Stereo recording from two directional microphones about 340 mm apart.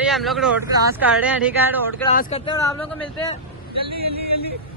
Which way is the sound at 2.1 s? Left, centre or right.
Centre.